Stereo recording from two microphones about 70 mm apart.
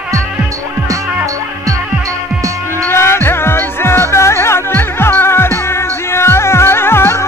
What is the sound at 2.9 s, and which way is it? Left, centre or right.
Music, left.